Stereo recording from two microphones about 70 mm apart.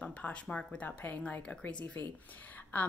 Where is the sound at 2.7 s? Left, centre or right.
Left.